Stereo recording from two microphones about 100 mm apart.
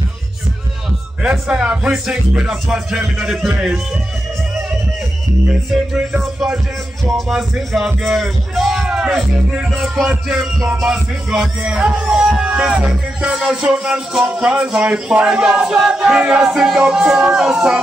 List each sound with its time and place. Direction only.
1.5 s music: 10° right (ahead or behind)
7.2 s speech: centre (ahead or behind)
10.8 s music: 5° right (ahead or behind)